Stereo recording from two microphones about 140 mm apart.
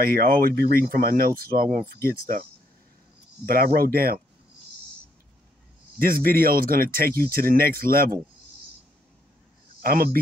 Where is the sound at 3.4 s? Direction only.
90° right.